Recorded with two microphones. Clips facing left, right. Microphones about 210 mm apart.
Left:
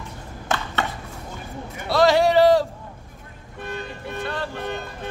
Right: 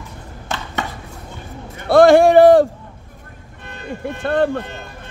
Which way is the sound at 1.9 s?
50° right (ahead or behind).